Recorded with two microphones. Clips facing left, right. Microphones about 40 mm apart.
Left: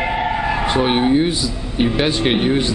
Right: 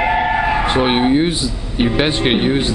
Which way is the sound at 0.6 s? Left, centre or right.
Right.